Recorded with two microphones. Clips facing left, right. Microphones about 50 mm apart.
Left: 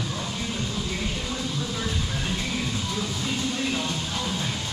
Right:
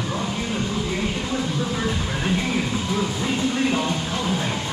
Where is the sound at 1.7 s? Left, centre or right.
Right.